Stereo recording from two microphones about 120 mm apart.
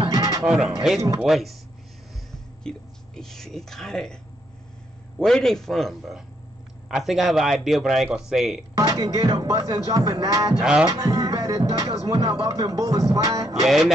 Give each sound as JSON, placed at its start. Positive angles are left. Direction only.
{"t": 0.1, "sound": "music", "side_deg": -30}
{"t": 0.9, "sound": "speech", "side_deg": -5}
{"t": 2.6, "sound": "speech", "side_deg": 5}
{"t": 5.2, "sound": "speech", "side_deg": 5}
{"t": 8.7, "sound": "speech", "side_deg": -30}
{"t": 10.6, "sound": "music", "side_deg": -10}
{"t": 10.9, "sound": "speech", "side_deg": -30}
{"t": 13.7, "sound": "speech", "side_deg": 0}